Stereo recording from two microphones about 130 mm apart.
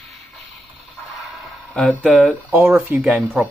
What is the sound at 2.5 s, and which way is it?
Speech, 15° right (ahead or behind).